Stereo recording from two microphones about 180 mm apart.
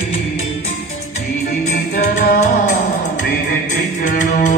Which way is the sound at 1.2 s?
40° left (ahead or behind).